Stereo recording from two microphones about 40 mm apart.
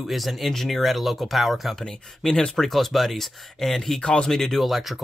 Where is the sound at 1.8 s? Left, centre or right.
Centre.